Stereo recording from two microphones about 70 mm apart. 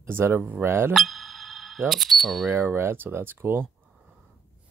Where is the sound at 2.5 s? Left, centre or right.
Right.